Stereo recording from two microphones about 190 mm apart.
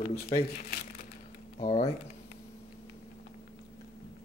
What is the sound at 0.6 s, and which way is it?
Crumpling, 50° left (ahead or behind).